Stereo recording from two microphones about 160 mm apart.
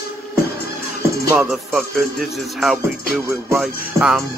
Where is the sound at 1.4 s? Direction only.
Centre (ahead or behind).